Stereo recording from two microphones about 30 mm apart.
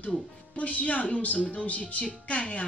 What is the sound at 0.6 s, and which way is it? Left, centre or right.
Speech, left.